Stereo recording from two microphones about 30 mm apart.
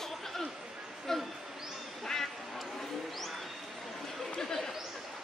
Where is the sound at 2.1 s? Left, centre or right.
Centre.